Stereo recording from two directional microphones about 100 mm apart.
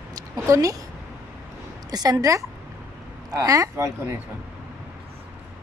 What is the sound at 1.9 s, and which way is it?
Speech, 40° right (ahead or behind).